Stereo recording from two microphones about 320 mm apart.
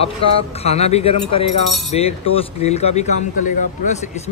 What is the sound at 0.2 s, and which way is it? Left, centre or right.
Speech, left.